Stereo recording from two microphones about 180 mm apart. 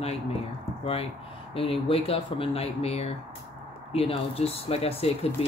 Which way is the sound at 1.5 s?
30° left (ahead or behind).